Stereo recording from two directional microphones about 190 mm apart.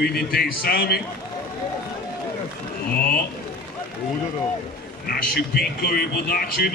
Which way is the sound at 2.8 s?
55° left (ahead or behind).